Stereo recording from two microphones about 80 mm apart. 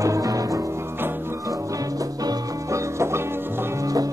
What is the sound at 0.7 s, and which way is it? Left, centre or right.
Music, right.